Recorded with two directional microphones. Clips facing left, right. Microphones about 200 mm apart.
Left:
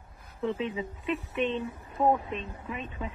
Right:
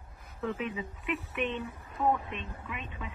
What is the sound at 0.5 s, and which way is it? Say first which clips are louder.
Speech: left 3 dB; 25° left (ahead or behind).